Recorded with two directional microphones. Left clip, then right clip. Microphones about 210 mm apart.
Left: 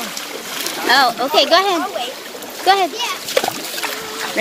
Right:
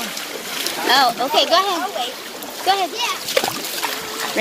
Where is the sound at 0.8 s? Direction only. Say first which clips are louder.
Left 2 dB; 15° left (ahead or behind).